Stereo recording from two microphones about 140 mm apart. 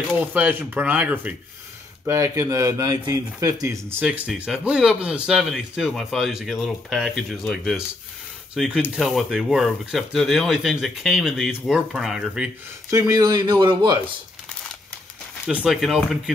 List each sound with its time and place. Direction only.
0.3 s speech: 15° right (ahead or behind)
4.0 s speech: 10° right (ahead or behind)
12.9 s speech: 25° right (ahead or behind)
15.4 s speech: 5° right (ahead or behind)